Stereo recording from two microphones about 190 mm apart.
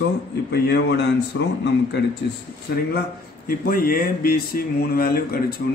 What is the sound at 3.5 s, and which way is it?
Speech, 50° left (ahead or behind).